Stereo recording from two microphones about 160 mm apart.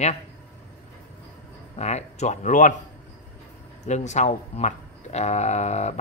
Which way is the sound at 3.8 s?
45° left (ahead or behind).